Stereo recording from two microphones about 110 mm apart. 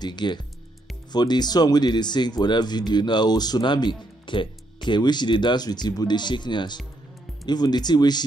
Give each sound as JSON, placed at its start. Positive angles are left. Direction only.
{"t": 0.0, "sound": "speech", "side_deg": 40}